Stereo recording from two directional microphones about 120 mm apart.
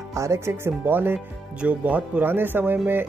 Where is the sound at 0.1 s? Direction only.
25° right (ahead or behind).